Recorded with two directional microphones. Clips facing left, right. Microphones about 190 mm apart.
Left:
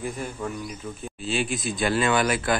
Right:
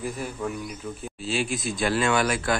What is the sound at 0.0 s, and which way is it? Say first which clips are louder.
Speech: even; centre (ahead or behind).